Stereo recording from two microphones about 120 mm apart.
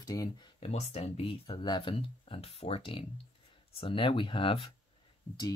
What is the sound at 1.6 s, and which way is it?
Speech, 40° left (ahead or behind).